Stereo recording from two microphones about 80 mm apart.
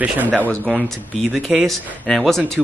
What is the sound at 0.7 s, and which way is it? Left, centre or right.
Speech, centre.